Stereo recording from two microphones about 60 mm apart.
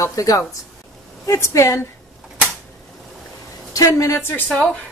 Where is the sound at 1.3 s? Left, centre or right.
Left.